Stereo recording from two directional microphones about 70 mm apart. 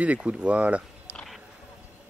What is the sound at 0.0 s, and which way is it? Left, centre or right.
Speech, centre.